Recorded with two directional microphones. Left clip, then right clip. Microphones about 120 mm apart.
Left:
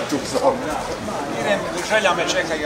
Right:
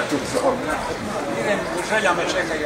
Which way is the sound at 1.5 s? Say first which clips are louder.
Left 4 dB; 25° left (ahead or behind).